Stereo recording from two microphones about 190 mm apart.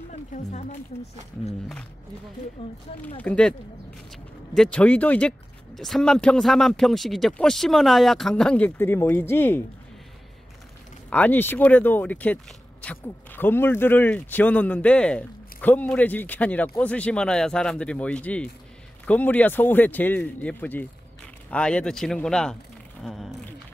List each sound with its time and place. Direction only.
0.3 s speech: 40° left (ahead or behind)
2.6 s speech: 25° left (ahead or behind)
3.2 s speech: 5° left (ahead or behind)
4.6 s speech: 5° left (ahead or behind)
11.1 s speech: 10° left (ahead or behind)